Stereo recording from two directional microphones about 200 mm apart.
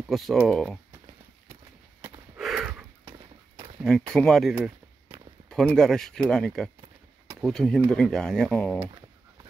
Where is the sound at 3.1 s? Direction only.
25° right (ahead or behind).